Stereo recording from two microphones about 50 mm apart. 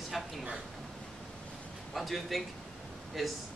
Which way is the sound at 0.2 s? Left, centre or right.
Centre.